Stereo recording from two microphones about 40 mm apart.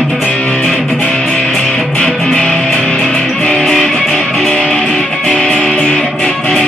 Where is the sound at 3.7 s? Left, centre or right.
Centre.